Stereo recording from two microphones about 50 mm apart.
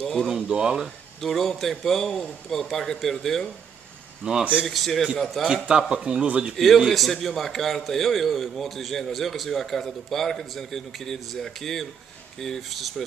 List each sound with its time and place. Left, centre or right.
0.0 s speech: centre
0.4 s speech: centre
1.2 s a man's voice: centre
4.2 s speech: centre
4.6 s a man's voice: centre
5.5 s a man's voice: centre
6.9 s a man's voice: centre